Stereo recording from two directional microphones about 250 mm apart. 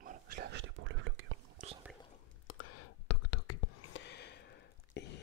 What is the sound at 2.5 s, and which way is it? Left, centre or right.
Whispering, left.